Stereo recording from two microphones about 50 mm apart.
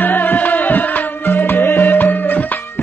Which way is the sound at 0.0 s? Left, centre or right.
Left.